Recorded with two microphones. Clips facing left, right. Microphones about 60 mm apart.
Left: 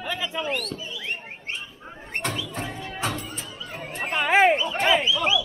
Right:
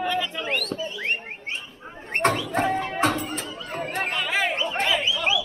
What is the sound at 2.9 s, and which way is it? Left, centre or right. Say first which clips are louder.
Music: right 6 dB; right.